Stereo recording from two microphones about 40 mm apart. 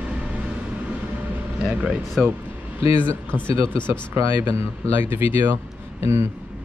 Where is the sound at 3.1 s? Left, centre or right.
Left.